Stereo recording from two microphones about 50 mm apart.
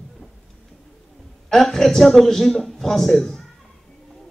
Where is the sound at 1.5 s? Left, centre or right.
Centre.